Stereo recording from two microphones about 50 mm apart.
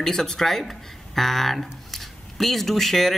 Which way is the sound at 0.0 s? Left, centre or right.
Centre.